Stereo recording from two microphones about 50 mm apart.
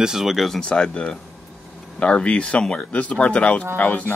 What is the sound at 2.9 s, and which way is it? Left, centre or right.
Speech, left.